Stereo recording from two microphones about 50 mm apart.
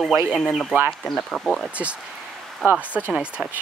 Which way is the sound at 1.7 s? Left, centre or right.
Right.